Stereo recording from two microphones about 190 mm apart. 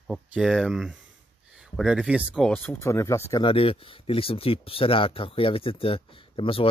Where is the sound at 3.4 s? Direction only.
30° left (ahead or behind).